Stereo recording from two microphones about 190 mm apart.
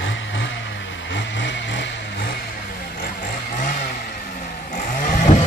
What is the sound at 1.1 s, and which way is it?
Vehicle, 70° left (ahead or behind).